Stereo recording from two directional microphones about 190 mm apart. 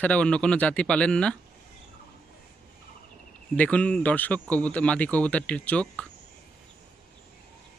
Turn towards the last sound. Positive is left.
turn(degrees=5)  # may be behind; listen again after turning